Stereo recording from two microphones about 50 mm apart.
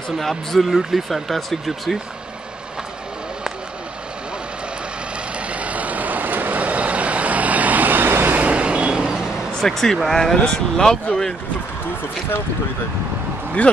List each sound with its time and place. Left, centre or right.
0.2 s speech: centre
5.5 s vehicle: right
8.4 s vehicle: right
9.6 s speech: centre
13.6 s speech: left